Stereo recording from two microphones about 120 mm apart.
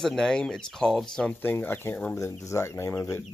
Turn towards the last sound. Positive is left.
turn(degrees=25)  # may be behind; listen again after turning